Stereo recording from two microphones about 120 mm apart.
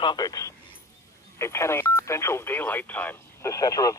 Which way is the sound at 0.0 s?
35° left (ahead or behind).